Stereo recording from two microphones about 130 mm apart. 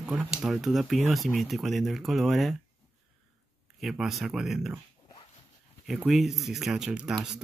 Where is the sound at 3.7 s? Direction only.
Centre (ahead or behind).